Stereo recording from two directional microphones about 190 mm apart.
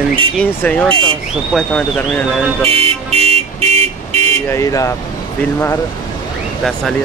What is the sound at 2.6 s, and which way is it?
Car alarm, 30° right (ahead or behind).